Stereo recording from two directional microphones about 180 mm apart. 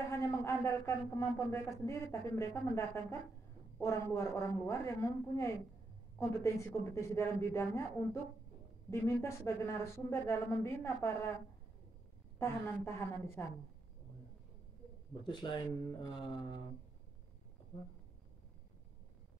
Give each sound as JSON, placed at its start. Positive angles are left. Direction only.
{"t": 0.1, "sound": "a man's voice", "side_deg": 15}
{"t": 12.4, "sound": "a man's voice", "side_deg": 15}
{"t": 15.2, "sound": "speech", "side_deg": 25}